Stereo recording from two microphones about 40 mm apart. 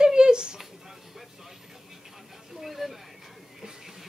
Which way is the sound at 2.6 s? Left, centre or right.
Centre.